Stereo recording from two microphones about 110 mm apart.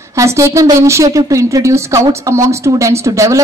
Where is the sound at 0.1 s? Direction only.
30° right (ahead or behind).